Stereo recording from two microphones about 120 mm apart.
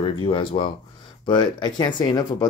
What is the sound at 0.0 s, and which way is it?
Speech, 45° left (ahead or behind).